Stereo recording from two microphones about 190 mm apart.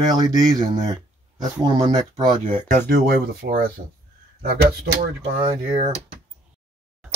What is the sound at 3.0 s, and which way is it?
Speech, 50° right (ahead or behind).